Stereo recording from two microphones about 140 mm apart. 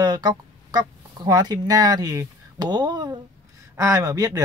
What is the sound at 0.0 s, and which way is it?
Speech, 30° right (ahead or behind).